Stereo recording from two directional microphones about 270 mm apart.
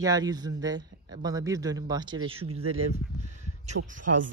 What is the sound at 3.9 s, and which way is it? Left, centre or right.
Speech, right.